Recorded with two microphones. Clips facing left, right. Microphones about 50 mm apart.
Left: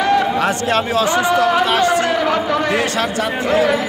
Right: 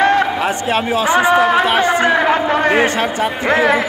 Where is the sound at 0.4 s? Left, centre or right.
Centre.